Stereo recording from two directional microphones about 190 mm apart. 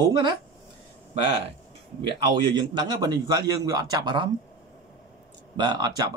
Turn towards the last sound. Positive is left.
turn(degrees=-20)  # may be behind; listen again after turning